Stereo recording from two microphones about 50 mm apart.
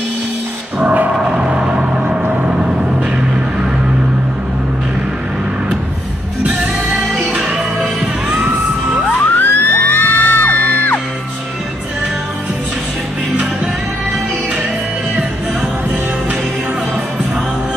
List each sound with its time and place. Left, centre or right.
0.7 s gong: right
1.2 s vehicle: centre
9.0 s music: left